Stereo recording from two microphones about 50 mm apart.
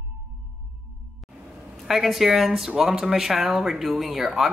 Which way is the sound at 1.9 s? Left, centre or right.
Centre.